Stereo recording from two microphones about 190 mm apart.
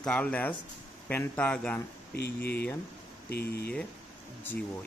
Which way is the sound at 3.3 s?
60° left (ahead or behind).